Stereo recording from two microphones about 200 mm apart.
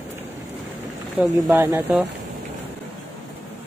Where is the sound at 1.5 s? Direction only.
15° right (ahead or behind).